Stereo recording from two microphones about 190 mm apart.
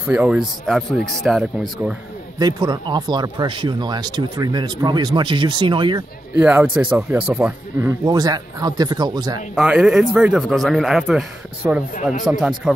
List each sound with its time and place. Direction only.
0.0 s a man's voice: 5° right (ahead or behind)
2.3 s speech: 20° right (ahead or behind)
6.3 s speech: 5° right (ahead or behind)
9.6 s a man's voice: 5° right (ahead or behind)
11.9 s speech: 40° left (ahead or behind)
12.3 s a man's voice: centre (ahead or behind)